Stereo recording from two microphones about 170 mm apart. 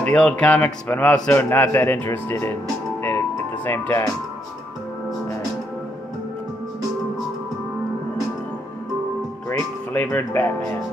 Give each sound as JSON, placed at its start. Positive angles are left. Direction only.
{"t": 0.0, "sound": "a man's voice", "side_deg": 5}
{"t": 3.6, "sound": "a man's voice", "side_deg": 10}
{"t": 9.5, "sound": "speech", "side_deg": 15}